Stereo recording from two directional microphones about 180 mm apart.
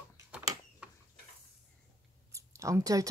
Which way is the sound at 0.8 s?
5° right (ahead or behind).